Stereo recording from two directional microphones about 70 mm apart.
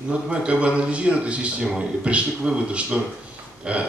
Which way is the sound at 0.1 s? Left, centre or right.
Centre.